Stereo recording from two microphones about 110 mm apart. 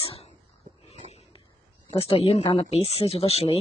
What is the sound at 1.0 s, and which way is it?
Pig, 80° right.